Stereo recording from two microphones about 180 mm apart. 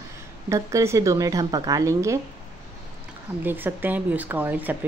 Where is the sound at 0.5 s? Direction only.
15° right (ahead or behind).